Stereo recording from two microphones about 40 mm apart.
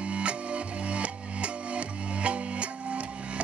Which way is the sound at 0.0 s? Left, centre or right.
Right.